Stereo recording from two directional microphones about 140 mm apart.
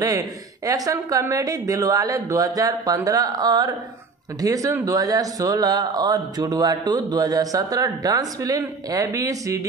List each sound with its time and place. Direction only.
0.0 s speech: 25° right (ahead or behind)